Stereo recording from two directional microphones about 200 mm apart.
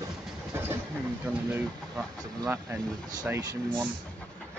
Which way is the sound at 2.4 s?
15° right (ahead or behind).